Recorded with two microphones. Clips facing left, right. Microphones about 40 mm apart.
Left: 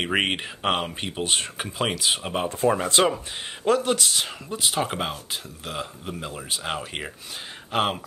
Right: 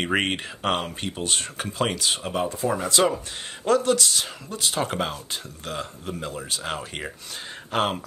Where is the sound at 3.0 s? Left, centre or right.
Centre.